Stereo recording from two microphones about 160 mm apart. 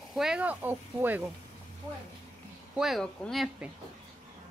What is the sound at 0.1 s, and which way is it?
Speech, 5° right (ahead or behind).